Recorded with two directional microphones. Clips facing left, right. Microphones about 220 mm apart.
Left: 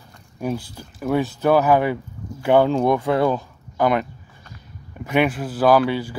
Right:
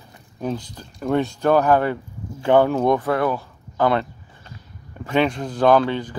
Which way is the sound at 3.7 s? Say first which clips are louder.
Even; 15° left (ahead or behind).